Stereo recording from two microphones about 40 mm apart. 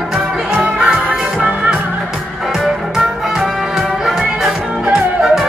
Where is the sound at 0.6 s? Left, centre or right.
Right.